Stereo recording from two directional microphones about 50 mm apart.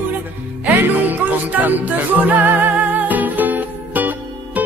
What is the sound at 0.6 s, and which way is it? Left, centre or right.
Music, right.